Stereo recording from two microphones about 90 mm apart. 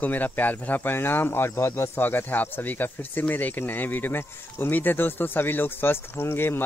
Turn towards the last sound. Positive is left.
turn(degrees=25)  # may be behind; listen again after turning